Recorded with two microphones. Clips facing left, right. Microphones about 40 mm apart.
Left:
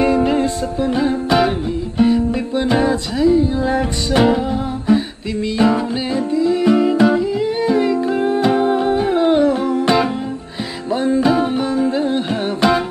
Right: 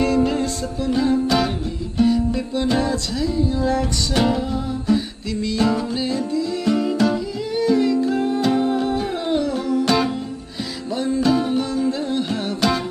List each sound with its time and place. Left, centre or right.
0.0 s music: left